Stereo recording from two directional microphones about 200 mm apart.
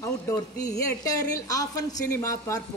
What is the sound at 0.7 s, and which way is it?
A woman's voice, 15° left (ahead or behind).